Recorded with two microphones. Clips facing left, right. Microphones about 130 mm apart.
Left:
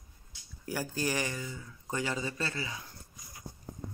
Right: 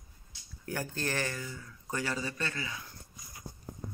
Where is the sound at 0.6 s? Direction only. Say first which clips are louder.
Left 2 dB; 10° left (ahead or behind); by 2.8 s 30° left (ahead or behind).